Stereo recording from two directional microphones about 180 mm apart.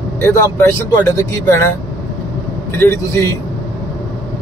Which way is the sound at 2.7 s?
15° left (ahead or behind).